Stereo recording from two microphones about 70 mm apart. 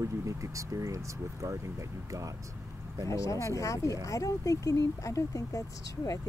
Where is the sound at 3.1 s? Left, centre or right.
Left.